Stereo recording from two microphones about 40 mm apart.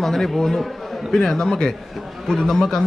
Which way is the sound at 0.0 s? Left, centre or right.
Centre.